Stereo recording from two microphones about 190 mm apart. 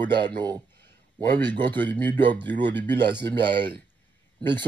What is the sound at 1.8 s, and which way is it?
Speech, 10° left (ahead or behind).